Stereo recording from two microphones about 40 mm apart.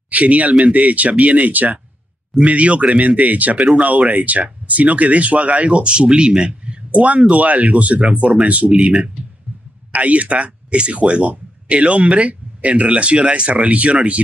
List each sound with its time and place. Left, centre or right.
0.1 s speech: right
2.4 s speech: right
9.9 s speech: right